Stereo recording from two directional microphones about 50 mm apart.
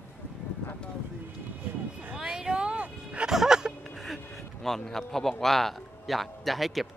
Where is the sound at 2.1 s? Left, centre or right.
Centre.